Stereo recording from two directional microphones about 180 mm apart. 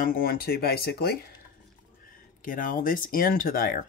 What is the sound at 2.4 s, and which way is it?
Speech, 50° left (ahead or behind).